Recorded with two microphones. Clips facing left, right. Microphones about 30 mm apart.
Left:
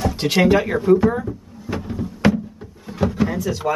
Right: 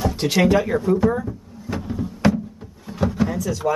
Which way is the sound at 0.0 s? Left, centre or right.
Centre.